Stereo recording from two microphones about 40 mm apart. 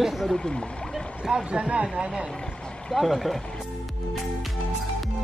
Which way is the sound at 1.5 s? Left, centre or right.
Right.